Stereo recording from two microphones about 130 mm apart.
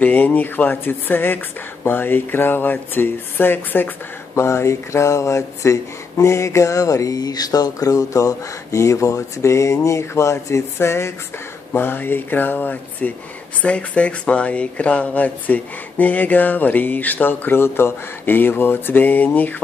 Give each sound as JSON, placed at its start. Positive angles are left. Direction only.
{"t": 0.0, "sound": "speech", "side_deg": 10}